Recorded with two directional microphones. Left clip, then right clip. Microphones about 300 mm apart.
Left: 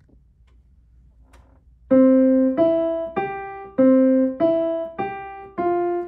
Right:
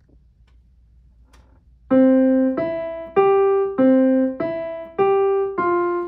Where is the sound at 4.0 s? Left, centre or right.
Right.